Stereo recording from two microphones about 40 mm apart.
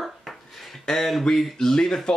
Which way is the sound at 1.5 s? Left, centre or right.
Centre.